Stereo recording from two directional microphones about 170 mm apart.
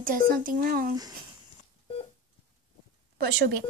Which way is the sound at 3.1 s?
90° right.